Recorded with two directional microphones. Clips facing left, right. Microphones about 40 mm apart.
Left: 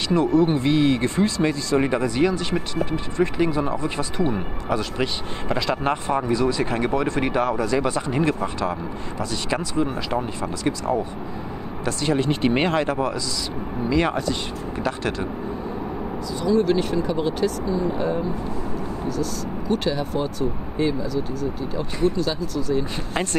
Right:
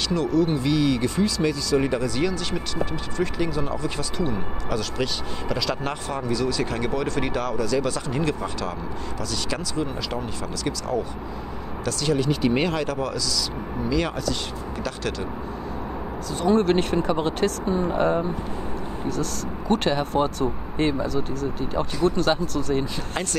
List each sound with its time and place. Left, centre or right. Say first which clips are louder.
0.1 s speech: left 4 dB; left
16.3 s speech: even; right
19.7 s speech: right 2 dB; right